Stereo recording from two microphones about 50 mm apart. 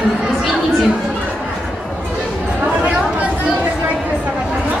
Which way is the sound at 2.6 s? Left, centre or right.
Right.